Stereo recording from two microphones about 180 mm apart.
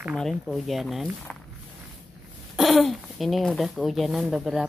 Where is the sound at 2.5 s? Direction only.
Centre (ahead or behind).